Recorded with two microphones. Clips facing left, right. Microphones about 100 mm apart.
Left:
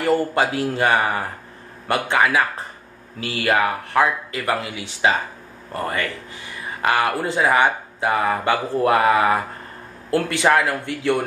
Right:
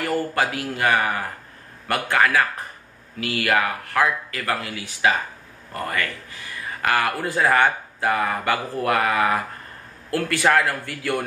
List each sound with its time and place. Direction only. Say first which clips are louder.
0.0 s speech: left 4 dB; 20° left (ahead or behind)